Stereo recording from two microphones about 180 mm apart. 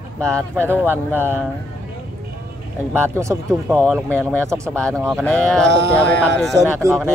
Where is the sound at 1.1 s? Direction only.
10° right (ahead or behind).